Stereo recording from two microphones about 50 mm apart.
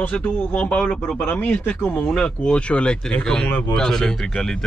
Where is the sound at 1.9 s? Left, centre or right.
Centre.